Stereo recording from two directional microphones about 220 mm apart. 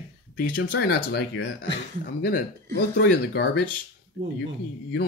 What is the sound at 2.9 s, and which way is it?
Speech, 50° left (ahead or behind).